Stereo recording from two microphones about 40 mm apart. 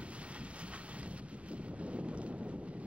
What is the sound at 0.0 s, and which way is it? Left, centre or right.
Wind noise, right.